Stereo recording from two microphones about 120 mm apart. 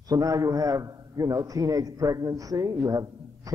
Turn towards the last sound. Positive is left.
turn(degrees=-30)  # may be behind; listen again after turning